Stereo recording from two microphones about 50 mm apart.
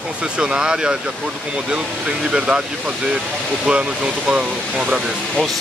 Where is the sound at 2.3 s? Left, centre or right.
Centre.